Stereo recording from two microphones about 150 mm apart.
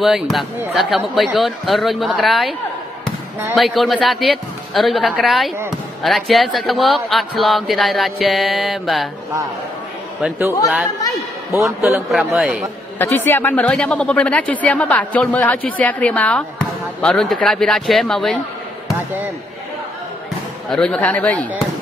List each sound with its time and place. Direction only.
0.0 s speech: centre (ahead or behind)
3.5 s speech: centre (ahead or behind)
11.5 s a man's voice: 15° right (ahead or behind)
12.4 s speech: centre (ahead or behind)
13.0 s speech: 15° left (ahead or behind)
20.7 s speech: 5° left (ahead or behind)